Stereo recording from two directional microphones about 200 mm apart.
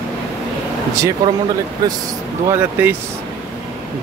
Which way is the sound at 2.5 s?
10° right (ahead or behind).